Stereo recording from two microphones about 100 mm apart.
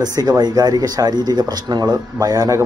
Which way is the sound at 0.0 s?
40° right (ahead or behind).